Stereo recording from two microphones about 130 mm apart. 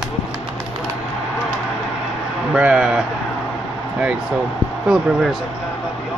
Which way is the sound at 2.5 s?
5° right (ahead or behind).